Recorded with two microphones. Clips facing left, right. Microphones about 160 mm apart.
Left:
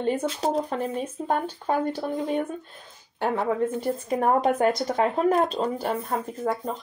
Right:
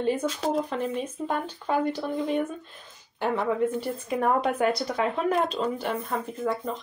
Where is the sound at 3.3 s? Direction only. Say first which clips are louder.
Even; 40° left (ahead or behind).